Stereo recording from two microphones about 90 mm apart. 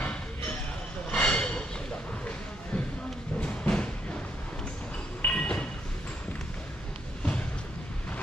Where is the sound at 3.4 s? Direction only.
10° left (ahead or behind).